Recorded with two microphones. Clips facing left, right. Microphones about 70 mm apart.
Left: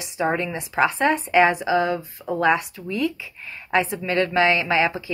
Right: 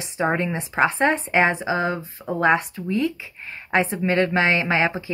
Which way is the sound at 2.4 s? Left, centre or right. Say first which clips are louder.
Right 1 dB; right.